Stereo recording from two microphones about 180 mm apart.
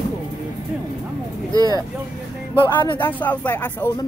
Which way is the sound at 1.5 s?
20° right (ahead or behind).